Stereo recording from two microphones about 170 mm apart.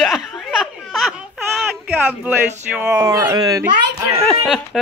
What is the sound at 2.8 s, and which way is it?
Speech, 10° right (ahead or behind).